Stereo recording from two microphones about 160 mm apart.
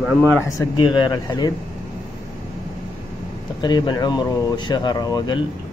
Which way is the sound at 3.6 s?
25° left (ahead or behind).